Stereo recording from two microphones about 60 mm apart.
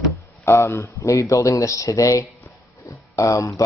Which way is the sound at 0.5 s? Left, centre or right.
Left.